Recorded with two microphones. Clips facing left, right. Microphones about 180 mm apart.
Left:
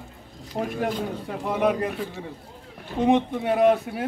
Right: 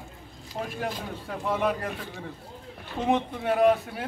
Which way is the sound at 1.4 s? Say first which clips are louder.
Left 4 dB; 15° left (ahead or behind).